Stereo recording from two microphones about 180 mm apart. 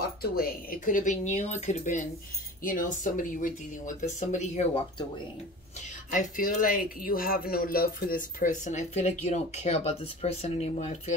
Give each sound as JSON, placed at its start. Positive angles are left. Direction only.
{"t": 0.2, "sound": "speech", "side_deg": 55}
{"t": 6.0, "sound": "speech", "side_deg": 45}